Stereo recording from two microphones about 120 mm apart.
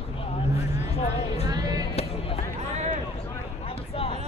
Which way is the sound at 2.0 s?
55° left (ahead or behind).